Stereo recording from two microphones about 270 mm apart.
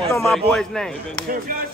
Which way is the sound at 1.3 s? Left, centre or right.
Right.